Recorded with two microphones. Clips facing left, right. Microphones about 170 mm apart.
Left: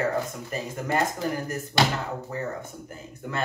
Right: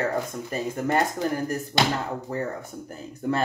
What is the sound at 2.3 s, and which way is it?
Speech, 35° right (ahead or behind).